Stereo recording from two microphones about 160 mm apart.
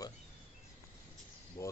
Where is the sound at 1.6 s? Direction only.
20° left (ahead or behind).